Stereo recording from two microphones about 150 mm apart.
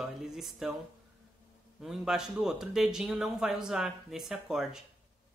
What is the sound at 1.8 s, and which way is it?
Speech, 5° right (ahead or behind).